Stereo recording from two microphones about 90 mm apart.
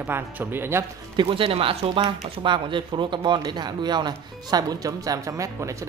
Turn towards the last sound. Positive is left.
turn(degrees=-35)  # may be behind; listen again after turning